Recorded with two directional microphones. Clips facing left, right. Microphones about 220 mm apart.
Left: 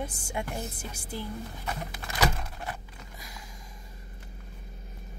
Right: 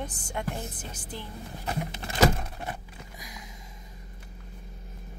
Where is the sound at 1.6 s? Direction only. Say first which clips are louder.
Right 4 dB; 25° right (ahead or behind).